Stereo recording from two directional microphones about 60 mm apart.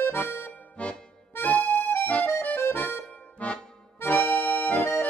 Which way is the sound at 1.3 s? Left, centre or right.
Left.